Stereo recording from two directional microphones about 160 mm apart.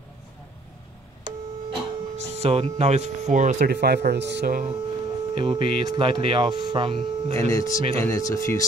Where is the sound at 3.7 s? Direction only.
90° right; by 4.7 s 60° right (ahead or behind).